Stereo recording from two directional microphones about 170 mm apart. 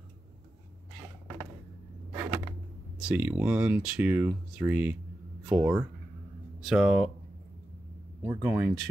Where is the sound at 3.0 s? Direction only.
5° right (ahead or behind).